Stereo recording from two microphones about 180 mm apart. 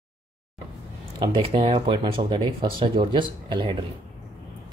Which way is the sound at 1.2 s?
25° right (ahead or behind).